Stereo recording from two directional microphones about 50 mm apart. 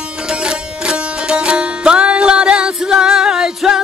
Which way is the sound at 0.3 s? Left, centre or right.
Centre.